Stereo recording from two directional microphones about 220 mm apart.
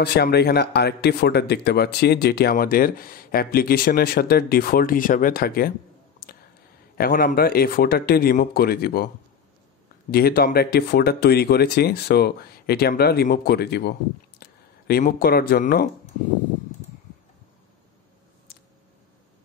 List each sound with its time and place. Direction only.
0.0 s speech: 45° left (ahead or behind)
7.0 s speech: 40° left (ahead or behind)
10.1 s speech: 45° left (ahead or behind)